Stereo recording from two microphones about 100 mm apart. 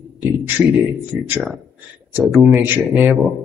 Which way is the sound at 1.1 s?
10° right (ahead or behind).